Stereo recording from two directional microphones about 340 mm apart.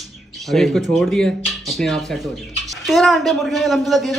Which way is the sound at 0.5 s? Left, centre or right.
Centre.